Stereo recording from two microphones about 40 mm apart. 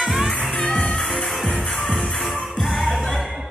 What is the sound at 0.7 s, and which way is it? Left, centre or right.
Music, left.